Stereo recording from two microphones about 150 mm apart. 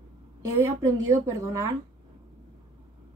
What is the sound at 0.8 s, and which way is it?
Speech, 20° right (ahead or behind).